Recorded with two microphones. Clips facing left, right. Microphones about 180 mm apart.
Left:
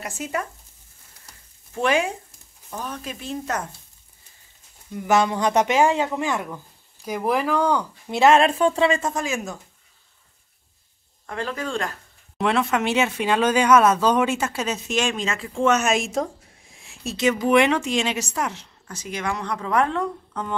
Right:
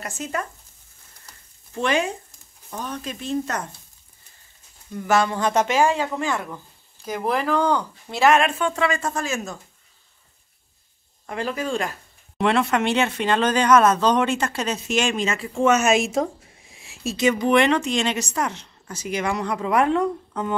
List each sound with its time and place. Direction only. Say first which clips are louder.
0.0 s a woman's voice: even; 10° left (ahead or behind)
1.8 s a woman's voice: left 1 dB; 5° left (ahead or behind)
4.9 s a woman's voice: left 1 dB; 15° left (ahead or behind)
8.2 s speech: left 2 dB; 30° left (ahead or behind); by 9.6 s 15° left (ahead or behind)
11.2 s speech: right 2 dB; 10° right (ahead or behind)
12.4 s a woman's voice: right 1 dB; centre (ahead or behind)